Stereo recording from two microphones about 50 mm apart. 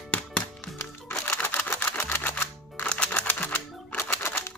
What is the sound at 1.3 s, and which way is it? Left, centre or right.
Typewriter, left.